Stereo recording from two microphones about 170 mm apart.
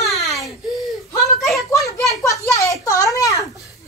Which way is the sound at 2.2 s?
20° left (ahead or behind).